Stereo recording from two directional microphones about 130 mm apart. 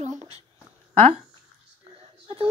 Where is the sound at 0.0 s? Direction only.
60° right (ahead or behind).